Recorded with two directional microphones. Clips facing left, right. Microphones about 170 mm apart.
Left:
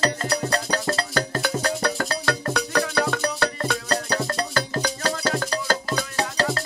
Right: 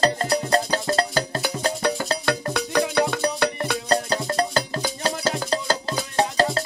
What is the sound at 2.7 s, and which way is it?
Music, 20° right (ahead or behind).